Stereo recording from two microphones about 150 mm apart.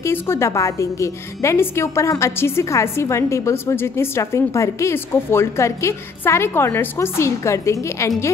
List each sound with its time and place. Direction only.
0.0 s a woman's voice: 15° left (ahead or behind)